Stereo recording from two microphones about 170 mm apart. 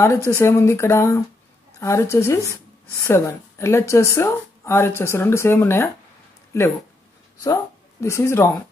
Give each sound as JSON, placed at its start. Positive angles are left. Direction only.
{"t": 0.0, "sound": "speech", "side_deg": 15}
{"t": 7.4, "sound": "speech", "side_deg": 15}